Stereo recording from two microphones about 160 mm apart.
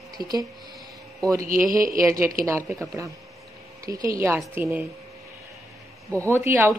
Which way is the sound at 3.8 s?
20° right (ahead or behind).